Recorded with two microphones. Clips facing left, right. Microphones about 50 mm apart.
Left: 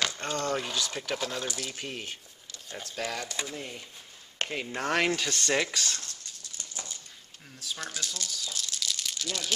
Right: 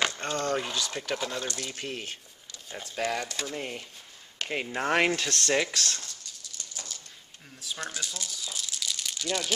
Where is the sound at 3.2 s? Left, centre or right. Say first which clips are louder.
Right 1 dB; centre.